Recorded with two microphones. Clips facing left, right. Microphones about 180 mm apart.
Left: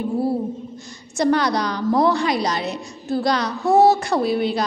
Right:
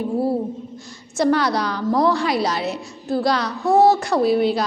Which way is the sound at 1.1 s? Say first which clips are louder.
Even; 5° right (ahead or behind).